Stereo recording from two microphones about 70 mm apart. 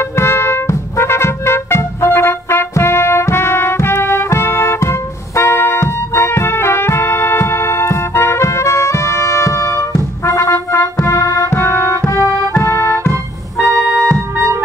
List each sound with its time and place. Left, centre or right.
0.0 s music: left
12.1 s accordion: left
13.7 s music: right